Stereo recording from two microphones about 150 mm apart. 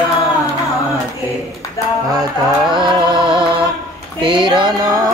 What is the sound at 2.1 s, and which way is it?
Music, 30° right (ahead or behind).